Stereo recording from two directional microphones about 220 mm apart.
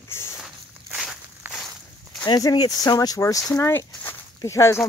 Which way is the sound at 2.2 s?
15° left (ahead or behind).